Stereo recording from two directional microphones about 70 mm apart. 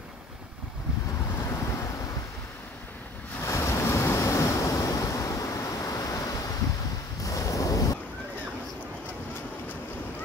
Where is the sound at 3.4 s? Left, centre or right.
Left.